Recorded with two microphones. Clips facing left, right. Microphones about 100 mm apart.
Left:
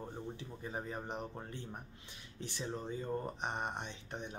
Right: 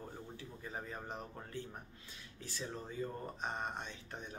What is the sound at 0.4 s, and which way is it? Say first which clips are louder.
Speech: left 3 dB; 20° left (ahead or behind).